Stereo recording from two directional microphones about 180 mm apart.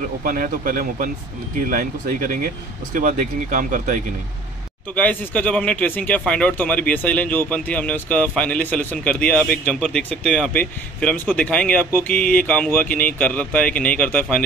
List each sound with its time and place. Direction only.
0.2 s speech: 50° right (ahead or behind)
4.9 s speech: 10° left (ahead or behind)